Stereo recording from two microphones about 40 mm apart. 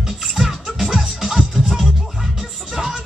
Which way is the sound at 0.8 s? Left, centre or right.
Centre.